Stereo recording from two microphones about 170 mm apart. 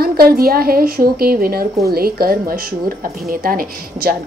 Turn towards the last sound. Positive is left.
turn(degrees=-60)  # may be behind; listen again after turning